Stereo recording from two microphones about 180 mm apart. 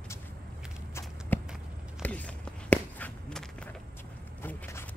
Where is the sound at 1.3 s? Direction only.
10° left (ahead or behind).